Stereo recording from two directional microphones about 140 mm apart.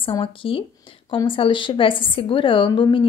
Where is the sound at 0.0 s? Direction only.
40° left (ahead or behind).